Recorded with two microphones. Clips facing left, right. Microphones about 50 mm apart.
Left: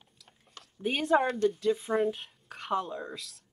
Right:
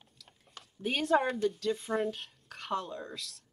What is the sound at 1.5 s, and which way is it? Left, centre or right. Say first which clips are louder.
A woman's voice: left 4 dB; centre.